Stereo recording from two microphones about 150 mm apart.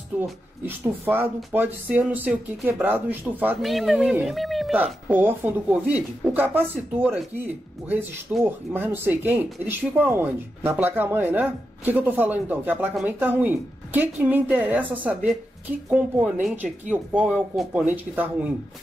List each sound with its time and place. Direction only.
0.2 s speech: 15° right (ahead or behind)
3.6 s speech: centre (ahead or behind)
5.0 s speech: 10° right (ahead or behind)
8.5 s speech: 15° right (ahead or behind)